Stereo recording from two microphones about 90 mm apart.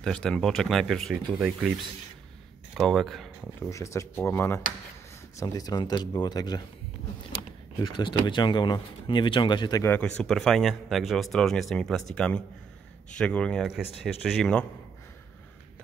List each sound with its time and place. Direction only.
0.0 s speech: 5° left (ahead or behind)
1.1 s speech: 10° right (ahead or behind)
2.7 s speech: centre (ahead or behind)
3.5 s speech: 30° left (ahead or behind)
5.4 s speech: 40° left (ahead or behind)
7.8 s speech: 60° left (ahead or behind)
9.8 s speech: 15° left (ahead or behind)
13.7 s speech: 5° right (ahead or behind)